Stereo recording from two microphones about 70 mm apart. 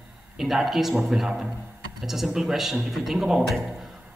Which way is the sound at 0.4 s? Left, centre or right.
Centre.